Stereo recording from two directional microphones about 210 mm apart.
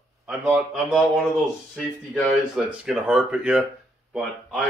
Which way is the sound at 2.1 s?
5° left (ahead or behind).